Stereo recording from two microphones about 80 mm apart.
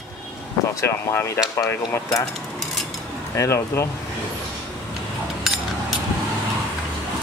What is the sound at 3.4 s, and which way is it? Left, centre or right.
Speech, left.